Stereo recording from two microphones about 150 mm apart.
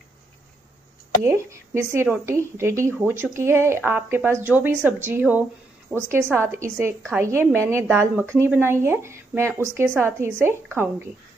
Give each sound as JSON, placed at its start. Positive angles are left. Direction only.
{"t": 1.2, "sound": "a woman's voice", "side_deg": -20}